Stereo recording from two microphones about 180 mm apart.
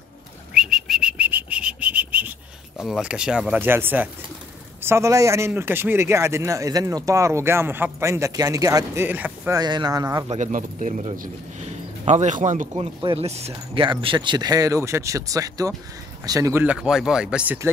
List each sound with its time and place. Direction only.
0.6 s bird flight: 5° right (ahead or behind)
2.8 s speech: centre (ahead or behind)
9.6 s speech: 25° right (ahead or behind)
10.2 s speech: 40° right (ahead or behind); by 16.6 s 20° right (ahead or behind)
16.6 s speech: 5° right (ahead or behind)